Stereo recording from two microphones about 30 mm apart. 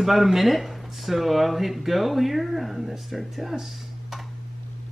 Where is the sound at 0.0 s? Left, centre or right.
Centre.